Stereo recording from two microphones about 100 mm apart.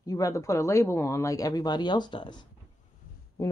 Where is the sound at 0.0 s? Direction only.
35° left (ahead or behind).